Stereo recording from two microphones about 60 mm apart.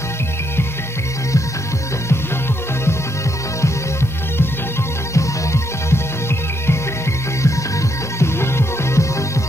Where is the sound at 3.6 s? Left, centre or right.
Left.